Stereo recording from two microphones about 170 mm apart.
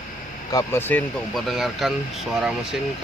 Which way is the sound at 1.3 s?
Centre (ahead or behind).